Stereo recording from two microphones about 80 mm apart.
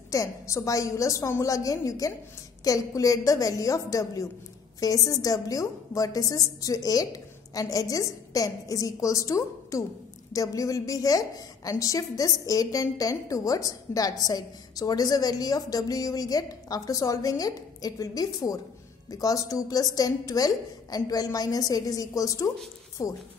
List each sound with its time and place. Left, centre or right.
0.1 s a woman's voice: left